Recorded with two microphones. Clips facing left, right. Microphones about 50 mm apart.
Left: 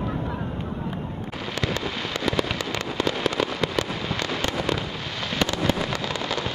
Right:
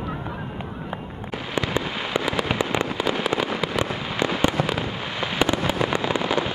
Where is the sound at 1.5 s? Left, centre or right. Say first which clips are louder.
Right 3 dB; centre.